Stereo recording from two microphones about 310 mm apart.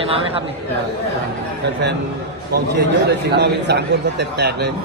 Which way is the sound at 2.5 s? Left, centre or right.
Right.